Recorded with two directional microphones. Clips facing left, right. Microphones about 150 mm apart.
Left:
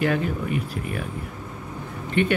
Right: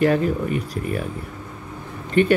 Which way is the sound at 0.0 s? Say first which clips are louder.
Right 5 dB; 35° right (ahead or behind).